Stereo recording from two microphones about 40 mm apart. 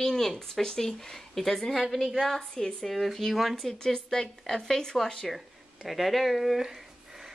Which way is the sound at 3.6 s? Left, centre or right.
Centre.